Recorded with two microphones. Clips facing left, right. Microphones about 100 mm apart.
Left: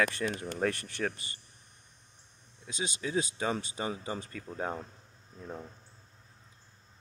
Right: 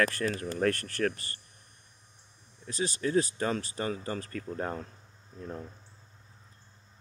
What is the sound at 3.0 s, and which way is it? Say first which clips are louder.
Speech: right 5 dB; 5° left (ahead or behind).